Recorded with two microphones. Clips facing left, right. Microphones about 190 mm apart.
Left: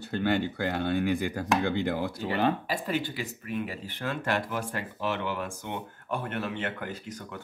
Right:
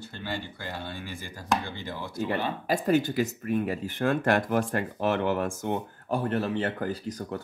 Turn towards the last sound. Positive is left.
turn(degrees=-35)  # may be behind; listen again after turning